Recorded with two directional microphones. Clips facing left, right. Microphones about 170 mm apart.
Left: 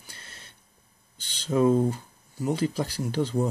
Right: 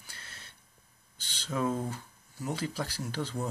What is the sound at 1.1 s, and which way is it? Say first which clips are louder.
Speech: left 9 dB; 15° left (ahead or behind).